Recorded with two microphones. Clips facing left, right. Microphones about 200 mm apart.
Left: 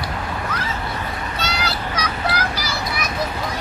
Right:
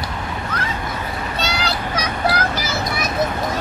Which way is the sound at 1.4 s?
30° right (ahead or behind).